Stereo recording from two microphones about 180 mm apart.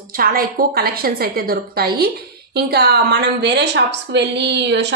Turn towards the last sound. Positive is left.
turn(degrees=-80)